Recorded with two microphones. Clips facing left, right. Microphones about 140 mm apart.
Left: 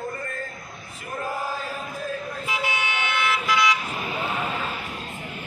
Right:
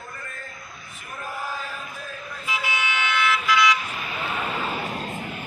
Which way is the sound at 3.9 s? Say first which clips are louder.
Left 3 dB; 25° left (ahead or behind).